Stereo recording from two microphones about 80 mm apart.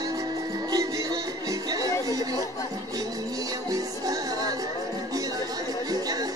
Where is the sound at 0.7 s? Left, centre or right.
Right.